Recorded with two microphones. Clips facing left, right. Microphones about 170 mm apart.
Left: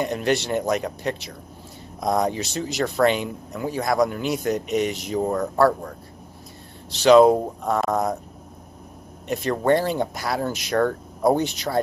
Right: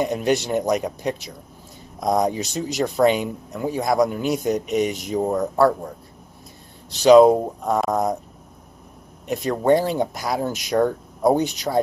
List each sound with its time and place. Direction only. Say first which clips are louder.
0.0 s speech: right 2 dB; centre (ahead or behind)
6.9 s speech: right 2 dB; centre (ahead or behind)
9.3 s speech: right 2 dB; centre (ahead or behind)